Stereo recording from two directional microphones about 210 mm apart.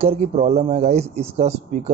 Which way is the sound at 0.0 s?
30° right (ahead or behind).